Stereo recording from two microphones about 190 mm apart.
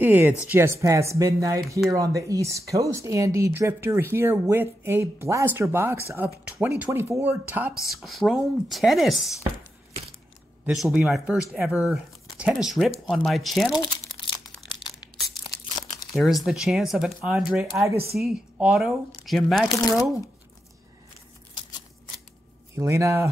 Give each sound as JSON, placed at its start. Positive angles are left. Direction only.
{"t": 0.0, "sound": "speech", "side_deg": -10}
{"t": 10.6, "sound": "speech", "side_deg": -5}
{"t": 13.7, "sound": "crumpling", "side_deg": 25}
{"t": 16.1, "sound": "speech", "side_deg": 0}
{"t": 19.7, "sound": "speech", "side_deg": 15}
{"t": 22.8, "sound": "speech", "side_deg": -15}